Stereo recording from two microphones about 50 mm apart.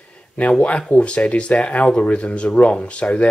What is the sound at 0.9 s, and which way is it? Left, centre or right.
Speech, left.